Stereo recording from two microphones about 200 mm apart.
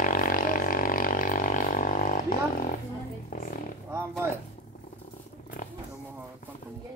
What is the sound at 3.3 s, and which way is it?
Roaring cats, 40° left (ahead or behind).